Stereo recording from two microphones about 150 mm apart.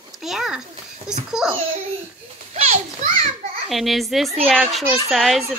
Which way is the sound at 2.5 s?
50° right (ahead or behind).